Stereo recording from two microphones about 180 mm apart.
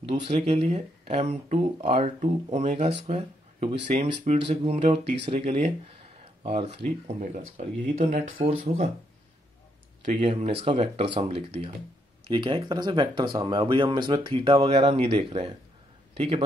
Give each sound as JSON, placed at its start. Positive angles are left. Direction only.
{"t": 0.0, "sound": "speech", "side_deg": -30}
{"t": 10.1, "sound": "speech", "side_deg": -35}